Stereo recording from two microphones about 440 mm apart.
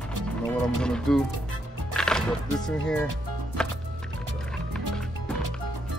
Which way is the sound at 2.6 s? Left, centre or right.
Centre.